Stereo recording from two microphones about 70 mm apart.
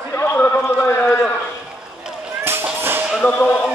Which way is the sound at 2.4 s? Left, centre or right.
Right.